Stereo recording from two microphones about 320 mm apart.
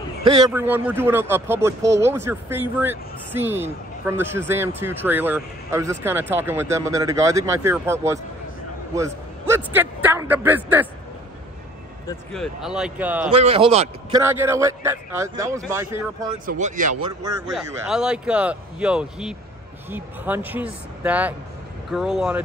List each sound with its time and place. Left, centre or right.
0.2 s a man's voice: centre
12.3 s a man's voice: centre
13.3 s speech: centre
16.4 s speech: right
17.0 s speech: centre
17.5 s a man's voice: centre